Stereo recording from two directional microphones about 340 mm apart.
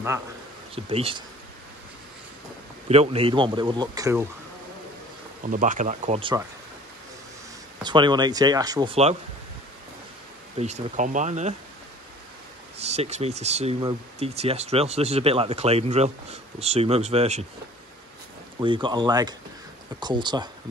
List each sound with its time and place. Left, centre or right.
0.8 s speech: centre
2.9 s speech: centre
5.5 s speech: right
7.8 s speech: centre
10.6 s speech: right
12.8 s speech: centre
18.6 s speech: centre